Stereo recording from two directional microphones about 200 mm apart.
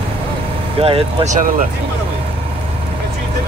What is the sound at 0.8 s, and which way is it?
Speech, 30° right (ahead or behind).